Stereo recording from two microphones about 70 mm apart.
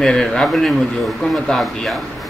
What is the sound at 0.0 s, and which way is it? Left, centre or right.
Speech, centre.